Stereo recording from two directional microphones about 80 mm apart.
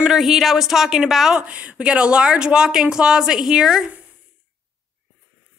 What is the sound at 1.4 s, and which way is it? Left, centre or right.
Speech, centre.